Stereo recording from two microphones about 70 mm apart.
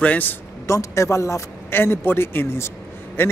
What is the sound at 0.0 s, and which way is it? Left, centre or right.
Speech, left.